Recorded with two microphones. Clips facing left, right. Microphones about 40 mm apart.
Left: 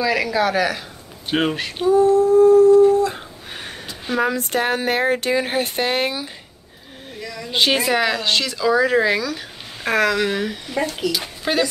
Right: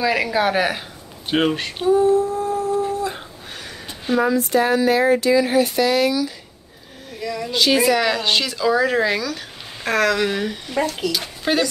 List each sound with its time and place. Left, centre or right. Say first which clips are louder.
0.0 s humming: even; centre
1.3 s speech: right 1 dB; centre
1.9 s humming: left 2 dB; centre
4.2 s speech: right 2 dB; left
7.2 s speech: right 6 dB; centre
7.5 s speech: even; left
8.0 s speech: even; centre